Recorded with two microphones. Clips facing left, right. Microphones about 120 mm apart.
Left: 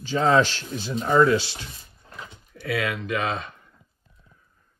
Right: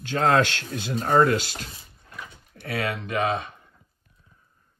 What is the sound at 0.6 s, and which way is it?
Speech, 55° right (ahead or behind).